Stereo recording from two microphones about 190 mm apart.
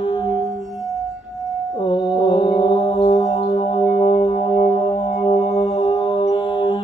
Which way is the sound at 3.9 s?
35° left (ahead or behind).